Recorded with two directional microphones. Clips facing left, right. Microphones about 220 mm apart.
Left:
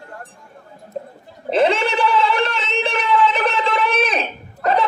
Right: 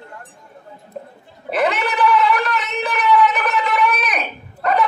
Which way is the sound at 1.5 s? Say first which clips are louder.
Left 3 dB; 25° left (ahead or behind).